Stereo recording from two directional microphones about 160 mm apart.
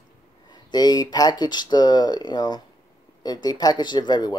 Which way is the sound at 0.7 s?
25° left (ahead or behind).